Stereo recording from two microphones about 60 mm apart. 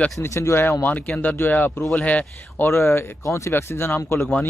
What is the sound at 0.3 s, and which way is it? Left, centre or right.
Speech, left.